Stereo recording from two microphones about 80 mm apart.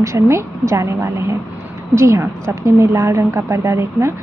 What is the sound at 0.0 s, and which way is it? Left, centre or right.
Speech, right.